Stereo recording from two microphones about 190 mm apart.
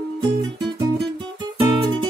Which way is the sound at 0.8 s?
25° right (ahead or behind).